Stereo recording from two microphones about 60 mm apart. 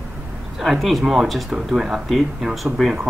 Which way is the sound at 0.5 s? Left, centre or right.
Centre.